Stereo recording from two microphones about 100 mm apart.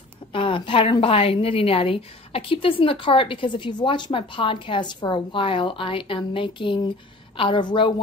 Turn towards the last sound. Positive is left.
turn(degrees=55)  # may be behind; listen again after turning